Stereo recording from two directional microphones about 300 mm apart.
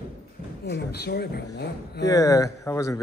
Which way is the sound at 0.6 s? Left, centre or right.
Left.